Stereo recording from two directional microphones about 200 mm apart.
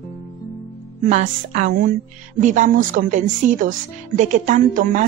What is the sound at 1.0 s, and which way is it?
A woman's voice, 40° right (ahead or behind).